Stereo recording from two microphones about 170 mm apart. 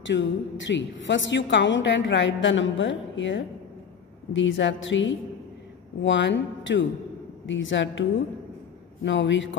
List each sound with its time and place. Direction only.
0.0 s a woman's voice: 90° left
6.0 s a woman's voice: 90° left
9.0 s a woman's voice: 90° left